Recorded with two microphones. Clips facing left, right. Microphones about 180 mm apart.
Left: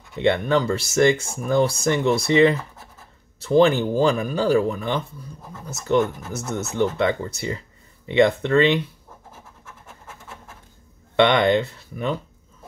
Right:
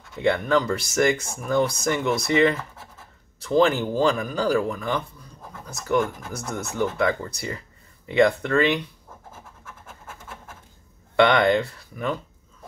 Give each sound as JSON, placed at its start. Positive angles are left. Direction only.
{"t": 0.2, "sound": "speech", "side_deg": 25}
{"t": 11.1, "sound": "speech", "side_deg": 25}